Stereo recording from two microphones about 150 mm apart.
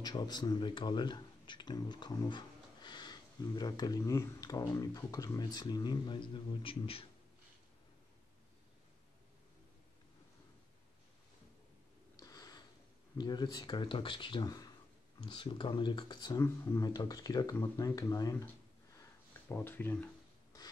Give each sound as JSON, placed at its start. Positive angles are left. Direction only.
{"t": 0.0, "sound": "speech", "side_deg": 25}
{"t": 12.2, "sound": "a sound", "side_deg": 25}
{"t": 13.2, "sound": "speech", "side_deg": 30}
{"t": 19.5, "sound": "speech", "side_deg": 15}